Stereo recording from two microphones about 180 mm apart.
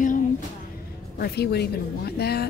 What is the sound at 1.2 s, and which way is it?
Speech, 65° left (ahead or behind).